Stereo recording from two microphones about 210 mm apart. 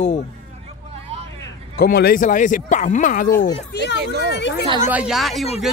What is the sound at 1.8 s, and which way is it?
Speech, 45° left (ahead or behind).